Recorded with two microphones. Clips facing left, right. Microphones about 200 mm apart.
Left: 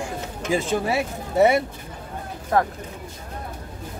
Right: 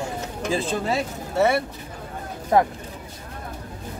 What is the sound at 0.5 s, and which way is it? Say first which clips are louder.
Speech: left 2 dB; 15° left (ahead or behind).